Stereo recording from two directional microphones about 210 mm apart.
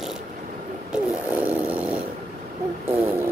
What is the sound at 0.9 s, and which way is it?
Snoring, 5° right (ahead or behind).